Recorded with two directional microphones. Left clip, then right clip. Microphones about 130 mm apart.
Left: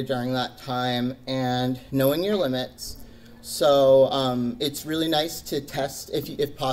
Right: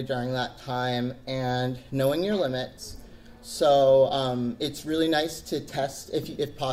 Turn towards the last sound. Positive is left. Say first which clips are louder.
# left 3 dB
turn(degrees=45)  # may be behind; listen again after turning